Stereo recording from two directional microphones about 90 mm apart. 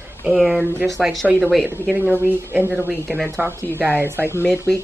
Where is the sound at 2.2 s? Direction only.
25° right (ahead or behind).